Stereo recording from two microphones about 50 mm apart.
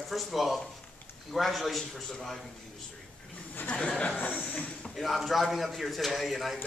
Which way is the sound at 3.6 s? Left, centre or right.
Left.